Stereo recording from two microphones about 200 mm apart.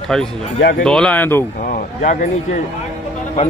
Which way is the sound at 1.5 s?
45° left (ahead or behind).